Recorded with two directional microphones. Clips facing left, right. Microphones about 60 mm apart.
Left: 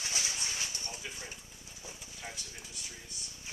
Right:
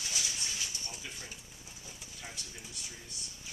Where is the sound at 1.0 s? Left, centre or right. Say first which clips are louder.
Left 2 dB; centre.